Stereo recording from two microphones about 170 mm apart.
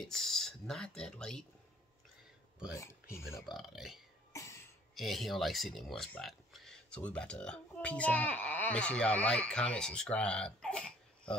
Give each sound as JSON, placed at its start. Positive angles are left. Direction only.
{"t": 0.0, "sound": "speech", "side_deg": 0}
{"t": 2.8, "sound": "speech", "side_deg": 15}
{"t": 3.5, "sound": "speech", "side_deg": 0}
{"t": 4.3, "sound": "cough", "side_deg": 15}
{"t": 4.9, "sound": "speech", "side_deg": 0}